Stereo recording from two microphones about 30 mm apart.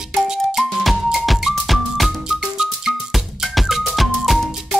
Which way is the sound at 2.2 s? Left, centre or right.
Centre.